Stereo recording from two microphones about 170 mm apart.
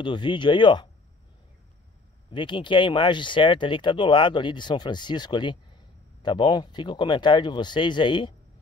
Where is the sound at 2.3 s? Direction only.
30° left (ahead or behind).